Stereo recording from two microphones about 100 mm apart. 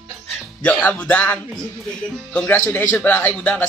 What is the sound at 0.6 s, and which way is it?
Speech, 15° left (ahead or behind).